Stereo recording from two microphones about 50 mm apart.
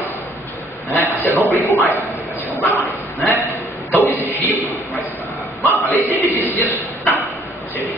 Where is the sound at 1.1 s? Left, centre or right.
Left.